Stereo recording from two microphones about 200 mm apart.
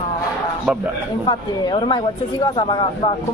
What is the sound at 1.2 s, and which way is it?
Speech, 25° left (ahead or behind).